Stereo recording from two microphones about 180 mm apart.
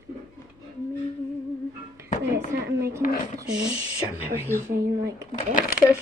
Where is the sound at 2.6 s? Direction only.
70° right (ahead or behind).